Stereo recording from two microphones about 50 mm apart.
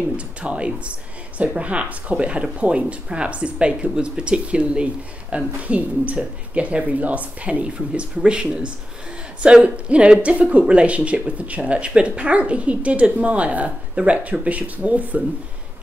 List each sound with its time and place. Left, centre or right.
0.4 s speech: right